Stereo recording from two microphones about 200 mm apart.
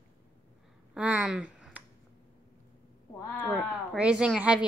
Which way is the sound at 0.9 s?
5° right (ahead or behind).